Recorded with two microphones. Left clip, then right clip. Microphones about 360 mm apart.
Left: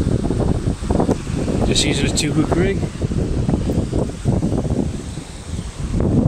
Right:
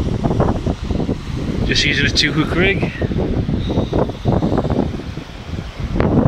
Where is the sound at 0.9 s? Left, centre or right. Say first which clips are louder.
Left 7 dB; left.